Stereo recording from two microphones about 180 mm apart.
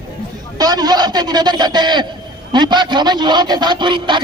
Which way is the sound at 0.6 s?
20° right (ahead or behind).